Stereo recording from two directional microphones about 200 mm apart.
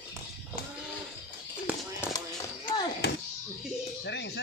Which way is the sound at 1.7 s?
10° right (ahead or behind).